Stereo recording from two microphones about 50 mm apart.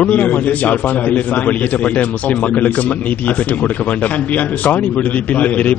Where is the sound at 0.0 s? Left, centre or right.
Left.